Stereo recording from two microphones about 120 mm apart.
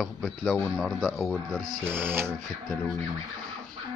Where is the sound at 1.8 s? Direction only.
20° right (ahead or behind).